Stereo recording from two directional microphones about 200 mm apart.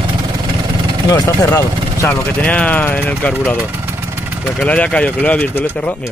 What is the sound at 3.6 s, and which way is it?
Speech, 10° right (ahead or behind).